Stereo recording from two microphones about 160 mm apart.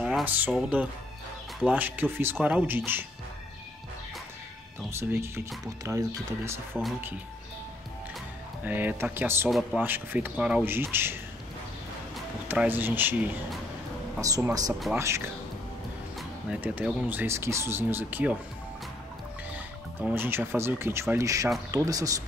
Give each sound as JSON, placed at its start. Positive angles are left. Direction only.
{"t": 0.0, "sound": "speech", "side_deg": -10}
{"t": 4.9, "sound": "speech", "side_deg": -15}
{"t": 8.6, "sound": "speech", "side_deg": -10}
{"t": 9.5, "sound": "a man's voice", "side_deg": 0}
{"t": 9.8, "sound": "speech", "side_deg": -10}
{"t": 12.4, "sound": "speech", "side_deg": -10}
{"t": 20.0, "sound": "speech", "side_deg": -15}